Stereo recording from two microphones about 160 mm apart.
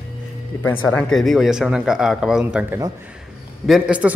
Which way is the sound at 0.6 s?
15° left (ahead or behind).